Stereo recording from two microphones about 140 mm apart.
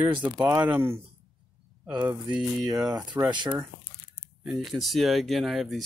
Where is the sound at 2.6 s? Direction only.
30° right (ahead or behind).